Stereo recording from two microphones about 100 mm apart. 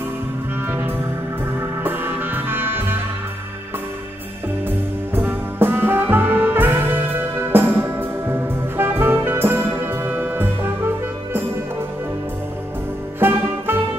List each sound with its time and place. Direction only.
0.7 s music: 20° right (ahead or behind)
4.6 s music: 20° right (ahead or behind)
13.2 s music: 20° right (ahead or behind)